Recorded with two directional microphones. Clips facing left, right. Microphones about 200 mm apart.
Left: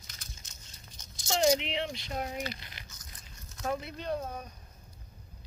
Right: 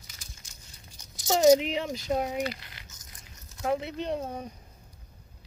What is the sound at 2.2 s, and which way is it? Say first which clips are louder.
Speech: right 6 dB; 20° right (ahead or behind).